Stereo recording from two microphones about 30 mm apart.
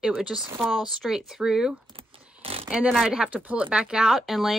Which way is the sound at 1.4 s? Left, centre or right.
Centre.